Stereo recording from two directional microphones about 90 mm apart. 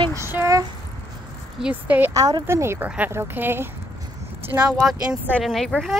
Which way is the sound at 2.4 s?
30° right (ahead or behind).